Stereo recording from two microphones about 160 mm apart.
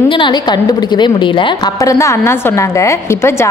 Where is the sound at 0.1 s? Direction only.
30° left (ahead or behind).